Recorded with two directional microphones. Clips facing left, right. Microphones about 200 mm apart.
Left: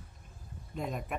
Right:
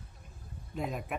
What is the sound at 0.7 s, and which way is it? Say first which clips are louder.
Speech: right 1 dB; centre (ahead or behind).